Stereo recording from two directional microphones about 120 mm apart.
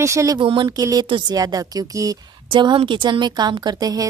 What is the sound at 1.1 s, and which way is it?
Speech, 45° right (ahead or behind).